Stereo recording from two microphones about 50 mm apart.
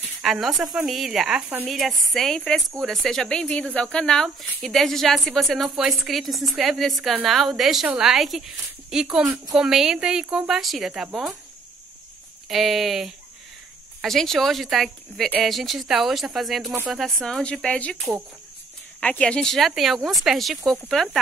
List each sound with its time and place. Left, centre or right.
0.2 s a woman's voice: centre
3.3 s a woman's voice: left; by 10.9 s centre
12.4 s a woman's voice: centre
17.4 s a woman's voice: centre
19.7 s a woman's voice: centre
20.6 s speech: right
20.9 s speech: centre